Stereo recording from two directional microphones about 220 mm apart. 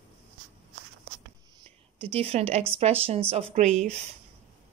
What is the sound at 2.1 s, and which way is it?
Speech, 25° right (ahead or behind).